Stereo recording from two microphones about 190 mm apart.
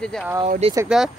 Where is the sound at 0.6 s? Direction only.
30° right (ahead or behind).